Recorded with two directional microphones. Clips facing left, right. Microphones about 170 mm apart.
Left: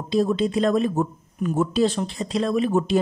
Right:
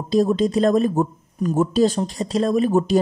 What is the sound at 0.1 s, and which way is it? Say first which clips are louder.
Speech: right 3 dB; 40° right (ahead or behind).